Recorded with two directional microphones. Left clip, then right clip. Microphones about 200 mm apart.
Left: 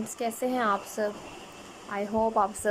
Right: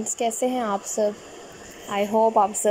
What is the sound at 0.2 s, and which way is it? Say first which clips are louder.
A woman's voice: right 4 dB; 10° right (ahead or behind).